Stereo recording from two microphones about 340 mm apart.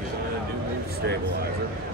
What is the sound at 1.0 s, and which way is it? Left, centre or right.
Speech, right.